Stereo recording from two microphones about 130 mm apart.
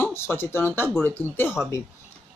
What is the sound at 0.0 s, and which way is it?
A man's voice, 20° left (ahead or behind).